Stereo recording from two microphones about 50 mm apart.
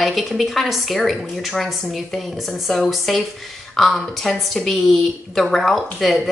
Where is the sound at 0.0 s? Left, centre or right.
Centre.